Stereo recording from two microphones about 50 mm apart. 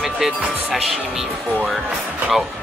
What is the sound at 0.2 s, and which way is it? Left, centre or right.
Speech, centre.